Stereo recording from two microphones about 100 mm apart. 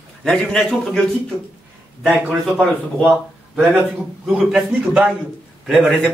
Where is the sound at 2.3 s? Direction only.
10° right (ahead or behind).